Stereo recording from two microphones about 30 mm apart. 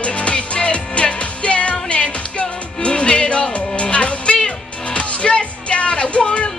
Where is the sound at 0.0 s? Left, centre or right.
Left.